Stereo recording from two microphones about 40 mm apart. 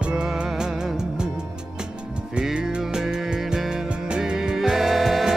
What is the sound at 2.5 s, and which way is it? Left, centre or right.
Music, centre.